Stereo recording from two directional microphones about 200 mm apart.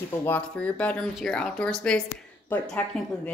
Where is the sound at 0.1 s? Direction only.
10° left (ahead or behind).